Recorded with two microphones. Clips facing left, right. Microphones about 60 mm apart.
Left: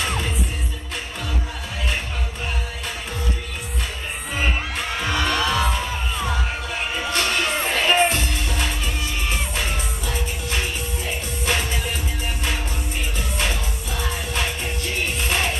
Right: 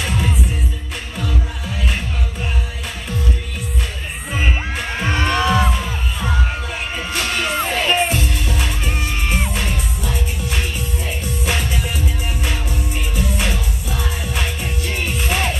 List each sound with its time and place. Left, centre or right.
0.0 s music: centre
4.3 s crowd: centre
5.0 s music: right
5.7 s music: centre
13.1 s music: centre